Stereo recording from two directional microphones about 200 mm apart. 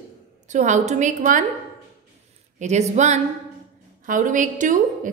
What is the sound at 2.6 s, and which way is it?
A woman's voice, 35° right (ahead or behind).